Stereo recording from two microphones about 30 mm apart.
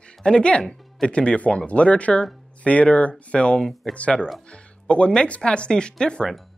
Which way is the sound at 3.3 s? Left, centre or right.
Left.